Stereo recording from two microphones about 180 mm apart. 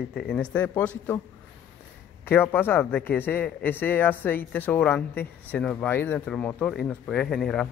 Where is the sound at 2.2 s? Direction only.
10° left (ahead or behind).